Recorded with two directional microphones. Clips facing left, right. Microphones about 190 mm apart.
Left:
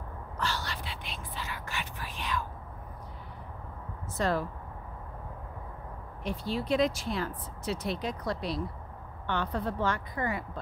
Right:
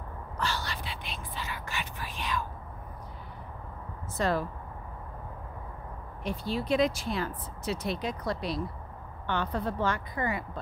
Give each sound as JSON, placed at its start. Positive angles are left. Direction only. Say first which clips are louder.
{"t": 0.4, "sound": "whispering", "louder": "right 1 dB", "side_deg": -15}
{"t": 4.2, "sound": "speech", "louder": "right 1 dB", "side_deg": -10}
{"t": 6.2, "sound": "speech", "louder": "right 1 dB", "side_deg": -15}